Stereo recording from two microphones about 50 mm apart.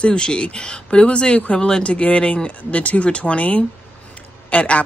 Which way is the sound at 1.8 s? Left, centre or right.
Left.